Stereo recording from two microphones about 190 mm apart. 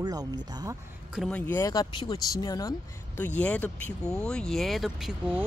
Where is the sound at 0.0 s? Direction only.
20° right (ahead or behind).